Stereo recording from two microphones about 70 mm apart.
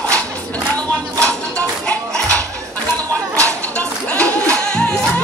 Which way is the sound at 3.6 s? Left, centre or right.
Centre.